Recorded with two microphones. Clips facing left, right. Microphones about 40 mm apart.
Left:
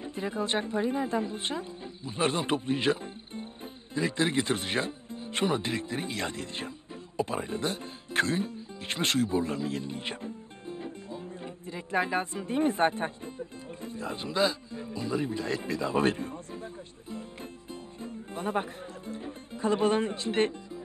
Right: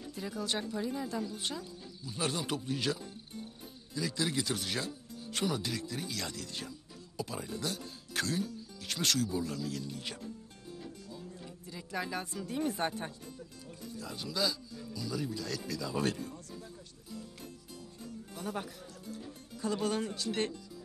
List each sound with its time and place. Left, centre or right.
0.0 s speech: left
7.2 s music: left